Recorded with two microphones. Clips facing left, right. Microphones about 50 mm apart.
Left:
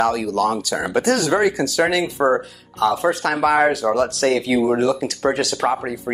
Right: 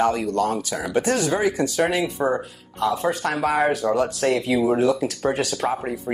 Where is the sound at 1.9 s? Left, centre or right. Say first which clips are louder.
Left 3 dB; left.